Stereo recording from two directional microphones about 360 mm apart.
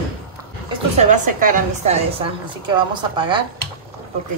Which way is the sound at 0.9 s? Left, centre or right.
Right.